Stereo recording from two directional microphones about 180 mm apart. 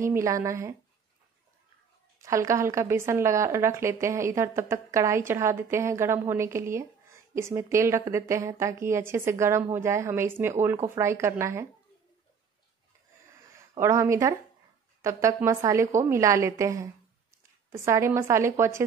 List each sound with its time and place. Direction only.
0.0 s a woman's voice: 15° right (ahead or behind)
2.2 s a woman's voice: 15° right (ahead or behind)
13.7 s a woman's voice: 15° right (ahead or behind)